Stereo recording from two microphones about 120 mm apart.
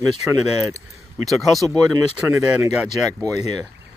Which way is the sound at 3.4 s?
30° right (ahead or behind).